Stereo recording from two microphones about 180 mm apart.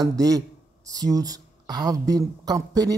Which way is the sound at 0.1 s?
20° right (ahead or behind).